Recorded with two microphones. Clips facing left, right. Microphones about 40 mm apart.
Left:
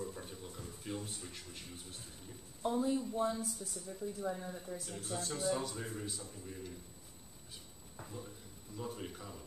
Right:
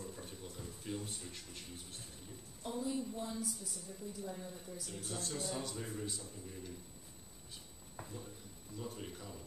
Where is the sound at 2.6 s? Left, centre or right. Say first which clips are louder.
Left 7 dB; left.